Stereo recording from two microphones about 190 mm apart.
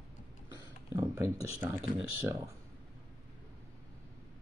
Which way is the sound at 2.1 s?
15° right (ahead or behind).